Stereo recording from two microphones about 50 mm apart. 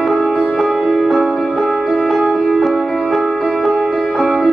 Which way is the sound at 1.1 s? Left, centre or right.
Centre.